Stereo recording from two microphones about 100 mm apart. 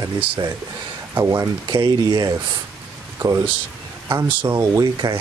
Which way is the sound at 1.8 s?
50° right (ahead or behind).